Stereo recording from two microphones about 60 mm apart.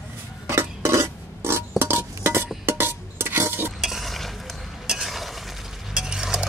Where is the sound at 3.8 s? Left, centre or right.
Centre.